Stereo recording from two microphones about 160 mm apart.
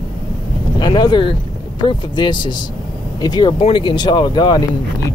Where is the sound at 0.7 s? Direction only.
30° left (ahead or behind).